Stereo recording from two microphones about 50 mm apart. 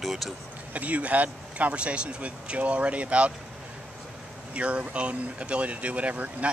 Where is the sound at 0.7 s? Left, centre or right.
Right.